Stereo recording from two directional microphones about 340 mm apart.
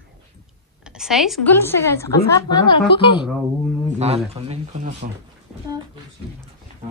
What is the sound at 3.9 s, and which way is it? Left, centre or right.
Speech, centre.